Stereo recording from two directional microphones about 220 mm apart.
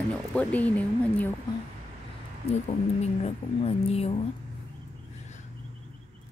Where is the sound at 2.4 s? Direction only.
30° left (ahead or behind).